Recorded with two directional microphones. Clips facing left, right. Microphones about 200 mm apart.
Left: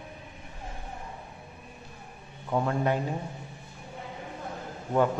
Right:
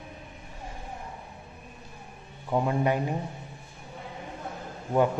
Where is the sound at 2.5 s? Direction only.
15° right (ahead or behind).